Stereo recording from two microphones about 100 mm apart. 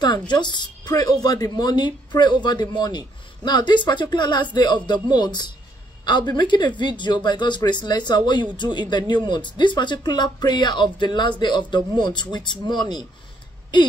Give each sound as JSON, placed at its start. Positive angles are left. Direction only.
{"t": 0.3, "sound": "a woman's voice", "side_deg": 50}